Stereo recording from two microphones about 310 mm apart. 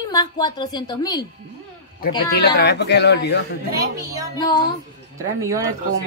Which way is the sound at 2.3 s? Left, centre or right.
Left.